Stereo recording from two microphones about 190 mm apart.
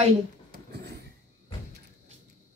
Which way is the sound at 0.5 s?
60° right (ahead or behind).